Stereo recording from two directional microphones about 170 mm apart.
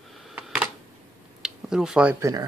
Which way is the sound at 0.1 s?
5° right (ahead or behind).